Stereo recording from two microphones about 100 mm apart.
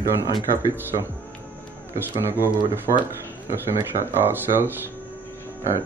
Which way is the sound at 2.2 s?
20° right (ahead or behind).